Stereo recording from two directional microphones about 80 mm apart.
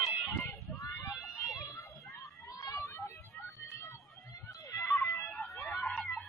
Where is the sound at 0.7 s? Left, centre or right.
Left.